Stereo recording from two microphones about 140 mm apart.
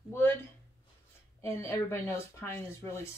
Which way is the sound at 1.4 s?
20° left (ahead or behind).